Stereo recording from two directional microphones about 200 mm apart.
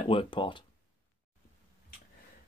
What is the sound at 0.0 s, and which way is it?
Speech, 25° left (ahead or behind).